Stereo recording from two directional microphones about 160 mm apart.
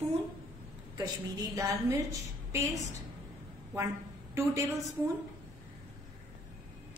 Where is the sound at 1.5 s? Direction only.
20° right (ahead or behind).